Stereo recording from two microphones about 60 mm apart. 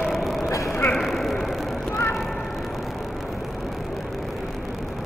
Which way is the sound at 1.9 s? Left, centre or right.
Left.